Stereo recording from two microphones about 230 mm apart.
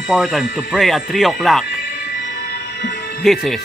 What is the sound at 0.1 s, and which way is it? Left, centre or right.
Speech, centre.